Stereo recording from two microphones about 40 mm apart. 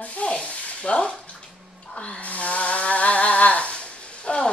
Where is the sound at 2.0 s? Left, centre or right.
Left.